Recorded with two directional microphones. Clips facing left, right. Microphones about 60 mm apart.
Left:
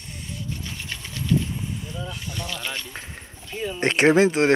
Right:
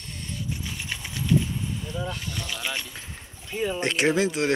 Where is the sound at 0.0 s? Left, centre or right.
Centre.